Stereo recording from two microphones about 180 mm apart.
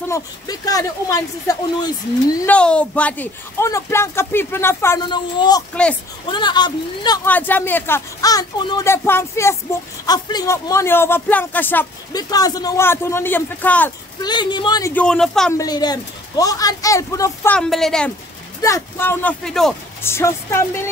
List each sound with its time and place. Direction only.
0.1 s speech: 20° left (ahead or behind)
2.4 s speech: 5° left (ahead or behind)
5.0 s speech: 25° left (ahead or behind)
7.2 s speech: 10° left (ahead or behind)
12.1 s speech: 20° left (ahead or behind)
14.2 s speech: 25° left (ahead or behind)
15.0 s speech: 5° left (ahead or behind)
15.5 s speech: 20° left (ahead or behind)
17.6 s speech: centre (ahead or behind)
18.6 s speech: 15° left (ahead or behind)
20.0 s speech: 15° left (ahead or behind)